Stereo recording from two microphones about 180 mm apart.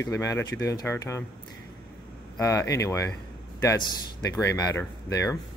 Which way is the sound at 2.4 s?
15° left (ahead or behind).